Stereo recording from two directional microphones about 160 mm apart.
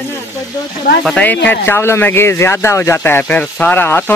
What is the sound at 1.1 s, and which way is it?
Speech, 10° left (ahead or behind).